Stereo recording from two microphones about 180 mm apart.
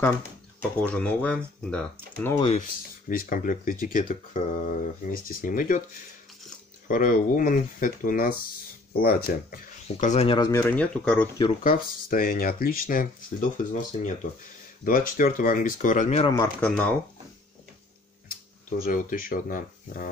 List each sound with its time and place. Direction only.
0.6 s speech: 5° left (ahead or behind)
2.3 s speech: 35° left (ahead or behind)
3.1 s speech: 50° left (ahead or behind)
6.9 s speech: 50° left (ahead or behind); by 10.5 s 30° left (ahead or behind)
10.5 s speech: 15° left (ahead or behind)
11.6 s speech: 50° left (ahead or behind)
16.6 s speech: 5° left (ahead or behind)
18.7 s speech: 50° left (ahead or behind)